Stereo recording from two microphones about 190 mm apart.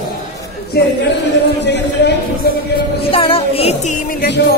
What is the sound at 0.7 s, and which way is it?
Speech, 55° left (ahead or behind).